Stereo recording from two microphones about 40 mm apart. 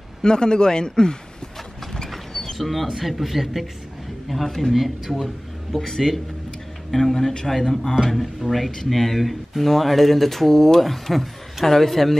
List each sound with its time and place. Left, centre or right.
0.2 s speech: centre
2.3 s speech: centre
5.2 s speech: centre
8.0 s speech: centre